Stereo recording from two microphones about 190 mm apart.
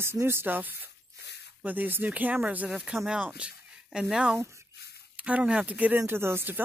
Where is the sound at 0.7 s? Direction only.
65° left (ahead or behind).